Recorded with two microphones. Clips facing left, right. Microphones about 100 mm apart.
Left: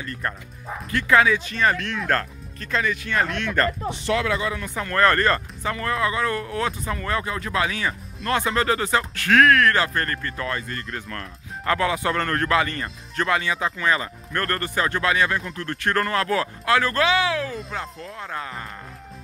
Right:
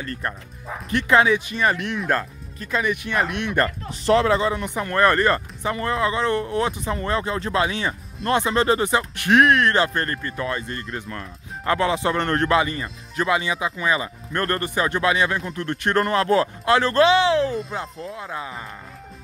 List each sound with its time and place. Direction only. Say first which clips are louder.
0.9 s speech: right 1 dB; 20° right (ahead or behind)
4.0 s speech: right 6 dB; 35° right (ahead or behind)
12.8 s speech: right 2 dB; 10° right (ahead or behind); by 17.6 s 25° right (ahead or behind)
17.9 s speech: right 1 dB; 5° right (ahead or behind)